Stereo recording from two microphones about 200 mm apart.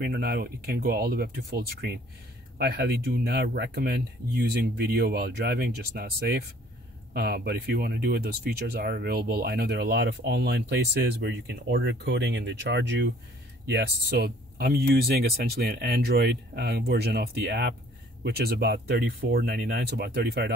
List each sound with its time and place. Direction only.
0.0 s speech: 45° right (ahead or behind)
2.6 s speech: 55° right (ahead or behind)